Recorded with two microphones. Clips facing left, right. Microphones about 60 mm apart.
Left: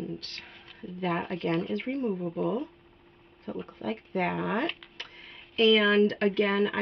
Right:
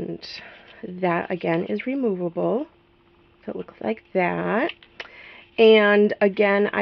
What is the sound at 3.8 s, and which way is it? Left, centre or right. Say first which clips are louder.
Speech: right 8 dB; right.